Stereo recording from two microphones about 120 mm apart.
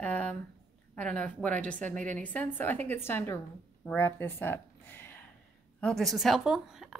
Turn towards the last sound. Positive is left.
turn(degrees=-5)  # may be behind; listen again after turning